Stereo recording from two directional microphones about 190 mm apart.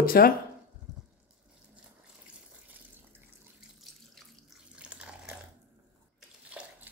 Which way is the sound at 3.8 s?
Centre (ahead or behind).